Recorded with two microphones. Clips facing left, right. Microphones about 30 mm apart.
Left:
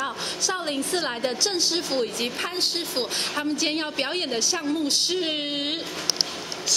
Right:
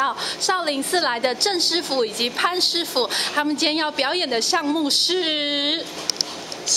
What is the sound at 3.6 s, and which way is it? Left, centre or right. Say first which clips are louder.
Speech: right 5 dB; right.